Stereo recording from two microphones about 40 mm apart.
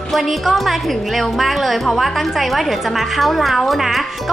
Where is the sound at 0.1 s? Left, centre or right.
Centre.